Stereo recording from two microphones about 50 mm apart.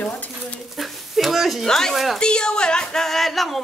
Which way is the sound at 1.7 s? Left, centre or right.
Centre.